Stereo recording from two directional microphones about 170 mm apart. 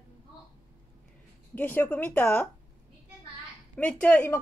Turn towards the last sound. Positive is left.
turn(degrees=10)  # may be behind; listen again after turning